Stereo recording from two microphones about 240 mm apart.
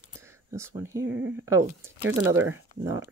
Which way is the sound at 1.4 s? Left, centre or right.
Centre.